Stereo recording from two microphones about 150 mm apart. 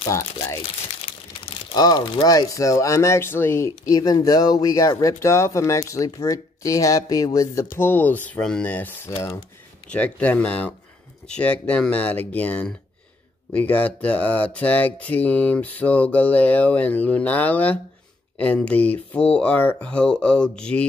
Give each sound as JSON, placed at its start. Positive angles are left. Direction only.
{"t": 1.7, "sound": "speech", "side_deg": 25}